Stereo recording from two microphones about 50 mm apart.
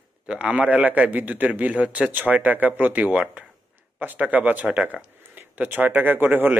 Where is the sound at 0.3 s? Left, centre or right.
Right.